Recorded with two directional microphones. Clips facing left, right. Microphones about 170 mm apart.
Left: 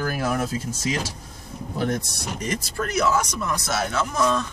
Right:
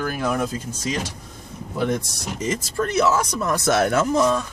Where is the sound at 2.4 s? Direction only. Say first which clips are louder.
Right 4 dB; 25° right (ahead or behind).